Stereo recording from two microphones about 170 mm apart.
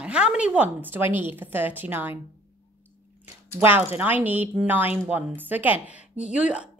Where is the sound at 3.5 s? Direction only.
10° right (ahead or behind).